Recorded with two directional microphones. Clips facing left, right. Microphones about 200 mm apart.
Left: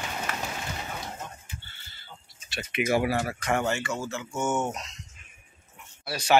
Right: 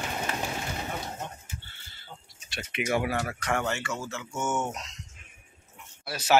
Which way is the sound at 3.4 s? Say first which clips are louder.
Left 3 dB; 25° left (ahead or behind).